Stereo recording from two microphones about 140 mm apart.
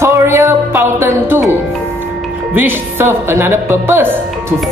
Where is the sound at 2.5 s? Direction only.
15° right (ahead or behind).